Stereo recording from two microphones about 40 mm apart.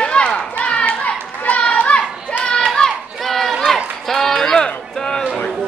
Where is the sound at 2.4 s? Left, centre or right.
Centre.